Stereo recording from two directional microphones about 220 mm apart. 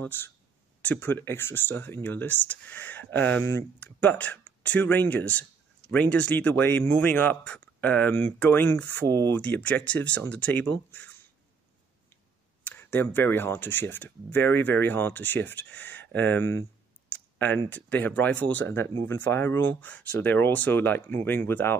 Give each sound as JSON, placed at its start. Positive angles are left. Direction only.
{"t": 0.0, "sound": "speech", "side_deg": 10}
{"t": 12.6, "sound": "speech", "side_deg": 10}